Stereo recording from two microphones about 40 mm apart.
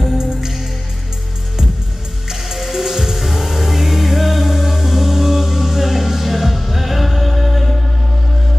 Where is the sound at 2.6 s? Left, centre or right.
Centre.